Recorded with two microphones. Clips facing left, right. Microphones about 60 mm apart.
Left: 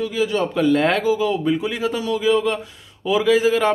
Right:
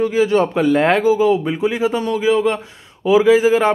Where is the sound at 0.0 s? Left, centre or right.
Right.